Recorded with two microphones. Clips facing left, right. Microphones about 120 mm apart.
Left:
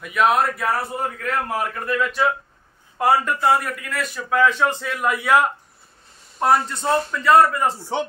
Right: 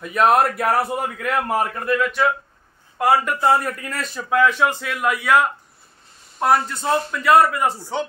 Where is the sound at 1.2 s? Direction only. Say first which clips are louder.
Right 4 dB; 55° right (ahead or behind).